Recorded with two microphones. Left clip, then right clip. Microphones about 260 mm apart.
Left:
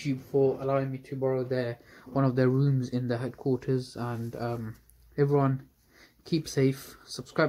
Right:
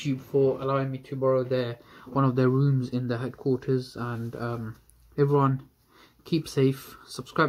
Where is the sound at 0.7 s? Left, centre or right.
Centre.